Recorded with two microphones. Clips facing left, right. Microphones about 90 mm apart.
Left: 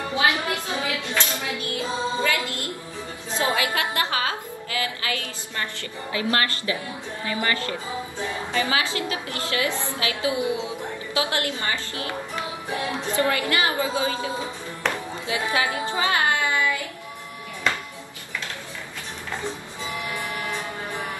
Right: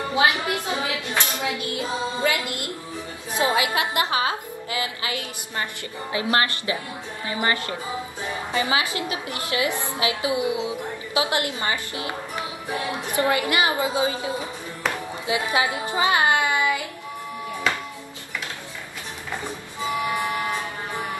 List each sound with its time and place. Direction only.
0.1 s a woman's voice: 20° right (ahead or behind)
14.9 s music: 20° right (ahead or behind)
20.1 s music: 20° right (ahead or behind)